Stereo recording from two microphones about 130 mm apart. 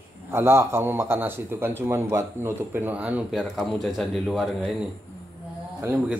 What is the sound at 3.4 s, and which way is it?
A man's voice, centre (ahead or behind).